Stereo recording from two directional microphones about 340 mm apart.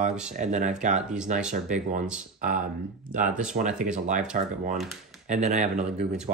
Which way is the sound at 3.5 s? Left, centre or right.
Right.